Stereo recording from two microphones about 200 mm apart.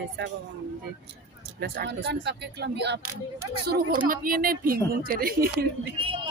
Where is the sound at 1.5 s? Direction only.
50° right (ahead or behind).